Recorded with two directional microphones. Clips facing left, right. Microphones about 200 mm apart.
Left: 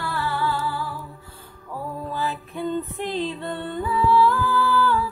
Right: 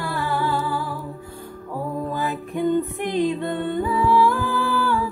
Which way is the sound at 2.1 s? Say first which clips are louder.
Right 3 dB; 15° right (ahead or behind).